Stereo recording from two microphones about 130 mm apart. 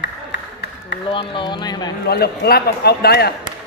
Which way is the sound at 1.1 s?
40° left (ahead or behind).